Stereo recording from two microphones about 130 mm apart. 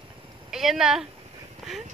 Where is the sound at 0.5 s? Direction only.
5° right (ahead or behind).